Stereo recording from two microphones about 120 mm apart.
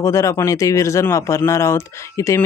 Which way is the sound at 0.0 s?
25° left (ahead or behind).